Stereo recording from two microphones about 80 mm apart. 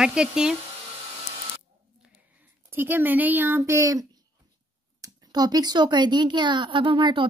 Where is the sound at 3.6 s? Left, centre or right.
Right.